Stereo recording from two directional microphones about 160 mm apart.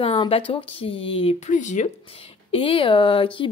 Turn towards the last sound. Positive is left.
turn(degrees=30)  # may be behind; listen again after turning